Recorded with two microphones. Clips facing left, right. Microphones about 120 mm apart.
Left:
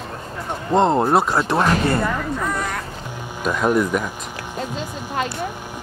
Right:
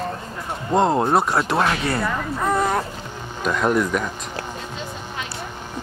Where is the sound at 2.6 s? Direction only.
30° right (ahead or behind).